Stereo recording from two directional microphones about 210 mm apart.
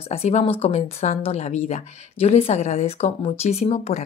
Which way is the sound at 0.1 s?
30° left (ahead or behind).